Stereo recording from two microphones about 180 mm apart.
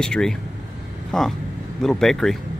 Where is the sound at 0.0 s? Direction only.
5° left (ahead or behind).